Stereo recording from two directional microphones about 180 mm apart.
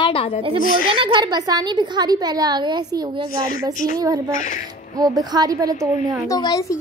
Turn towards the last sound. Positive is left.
turn(degrees=20)  # may be behind; listen again after turning